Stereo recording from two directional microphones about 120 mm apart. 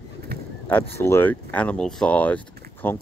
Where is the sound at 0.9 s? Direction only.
20° left (ahead or behind).